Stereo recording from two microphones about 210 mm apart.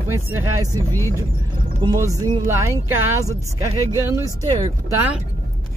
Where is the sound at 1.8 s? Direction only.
15° right (ahead or behind).